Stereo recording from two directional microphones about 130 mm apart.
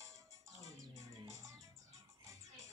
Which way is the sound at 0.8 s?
25° right (ahead or behind).